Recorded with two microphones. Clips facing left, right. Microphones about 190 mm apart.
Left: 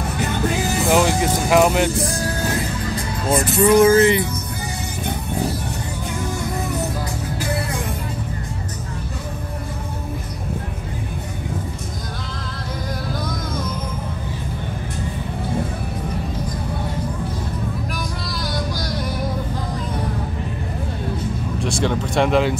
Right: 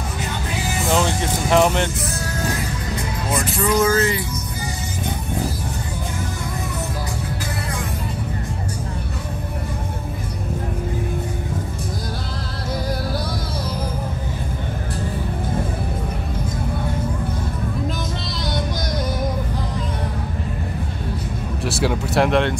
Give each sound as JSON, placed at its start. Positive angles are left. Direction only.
{"t": 0.8, "sound": "music", "side_deg": 10}
{"t": 3.3, "sound": "music", "side_deg": 25}
{"t": 21.6, "sound": "speech", "side_deg": -5}